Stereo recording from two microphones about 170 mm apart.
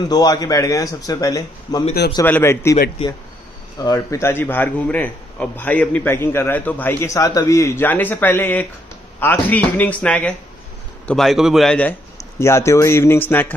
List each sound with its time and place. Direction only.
0.1 s a man's voice: 25° left (ahead or behind); by 11.9 s 5° left (ahead or behind)
12.2 s a man's voice: 15° left (ahead or behind)